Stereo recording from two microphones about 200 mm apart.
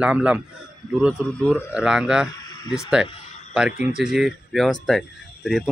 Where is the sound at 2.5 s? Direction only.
20° left (ahead or behind).